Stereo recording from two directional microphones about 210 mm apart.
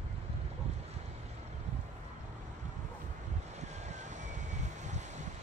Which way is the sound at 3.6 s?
35° right (ahead or behind).